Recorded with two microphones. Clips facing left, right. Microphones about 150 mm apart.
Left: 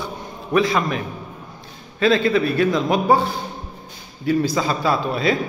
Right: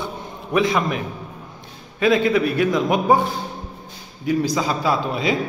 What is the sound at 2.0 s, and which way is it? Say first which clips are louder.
A man's voice: even; 15° right (ahead or behind).